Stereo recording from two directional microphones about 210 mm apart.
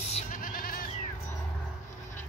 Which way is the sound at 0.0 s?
40° left (ahead or behind).